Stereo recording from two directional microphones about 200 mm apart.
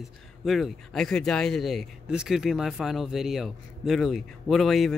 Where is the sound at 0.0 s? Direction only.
Centre (ahead or behind).